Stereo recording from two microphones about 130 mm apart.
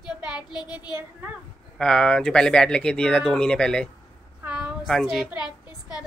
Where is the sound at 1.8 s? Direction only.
5° left (ahead or behind).